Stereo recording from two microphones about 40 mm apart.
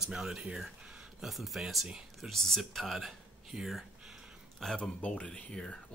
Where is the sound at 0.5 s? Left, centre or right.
Centre.